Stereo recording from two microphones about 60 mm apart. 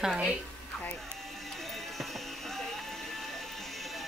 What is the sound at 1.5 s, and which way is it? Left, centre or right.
Music, centre.